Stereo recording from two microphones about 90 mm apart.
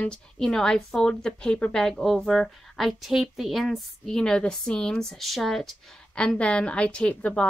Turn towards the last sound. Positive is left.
turn(degrees=15)  # may be behind; listen again after turning